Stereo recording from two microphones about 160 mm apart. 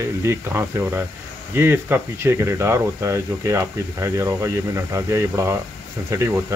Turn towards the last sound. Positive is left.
turn(degrees=-15)  # may be behind; listen again after turning